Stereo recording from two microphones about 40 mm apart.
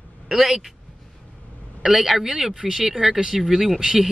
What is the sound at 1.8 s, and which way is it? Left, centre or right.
Speech, centre.